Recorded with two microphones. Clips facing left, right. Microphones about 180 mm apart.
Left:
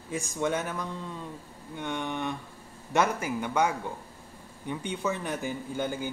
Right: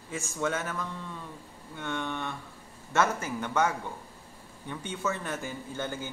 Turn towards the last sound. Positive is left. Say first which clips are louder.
# left 3 dB
turn(degrees=15)  # may be behind; listen again after turning